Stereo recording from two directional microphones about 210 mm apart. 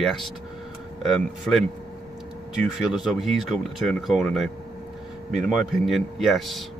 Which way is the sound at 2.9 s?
Centre (ahead or behind).